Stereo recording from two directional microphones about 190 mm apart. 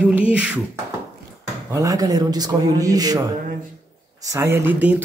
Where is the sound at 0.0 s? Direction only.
5° right (ahead or behind).